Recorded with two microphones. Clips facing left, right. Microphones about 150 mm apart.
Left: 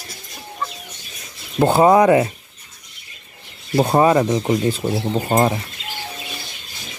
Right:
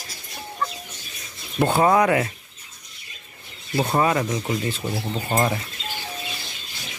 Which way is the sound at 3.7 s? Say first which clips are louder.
Left 6 dB; 35° left (ahead or behind).